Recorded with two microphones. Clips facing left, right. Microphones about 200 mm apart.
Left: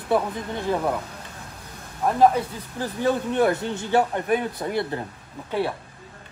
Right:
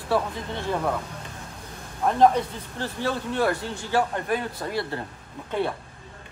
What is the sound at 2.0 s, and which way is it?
Speech, 5° left (ahead or behind).